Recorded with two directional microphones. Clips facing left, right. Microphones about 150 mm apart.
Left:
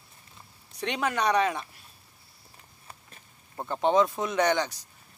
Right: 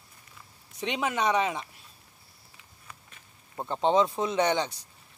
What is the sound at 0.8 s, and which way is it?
Speech, 15° right (ahead or behind).